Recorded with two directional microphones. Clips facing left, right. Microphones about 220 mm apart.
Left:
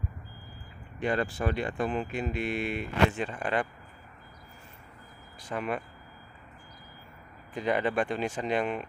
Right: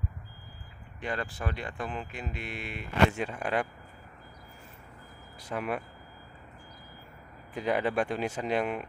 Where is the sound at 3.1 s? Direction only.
10° right (ahead or behind).